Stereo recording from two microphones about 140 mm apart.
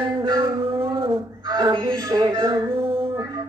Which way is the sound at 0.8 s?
40° right (ahead or behind).